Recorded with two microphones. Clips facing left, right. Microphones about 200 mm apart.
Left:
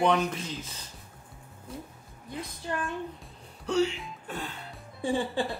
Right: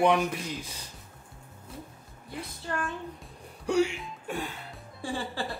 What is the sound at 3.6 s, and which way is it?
Speech, 10° right (ahead or behind).